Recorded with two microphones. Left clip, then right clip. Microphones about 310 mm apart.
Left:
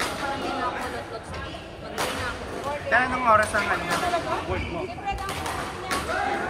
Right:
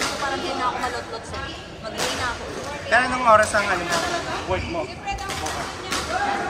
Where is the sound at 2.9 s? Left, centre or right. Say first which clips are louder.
Right 4 dB; centre.